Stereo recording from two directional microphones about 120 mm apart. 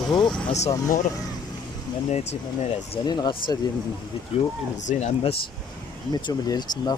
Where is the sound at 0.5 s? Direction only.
70° left (ahead or behind).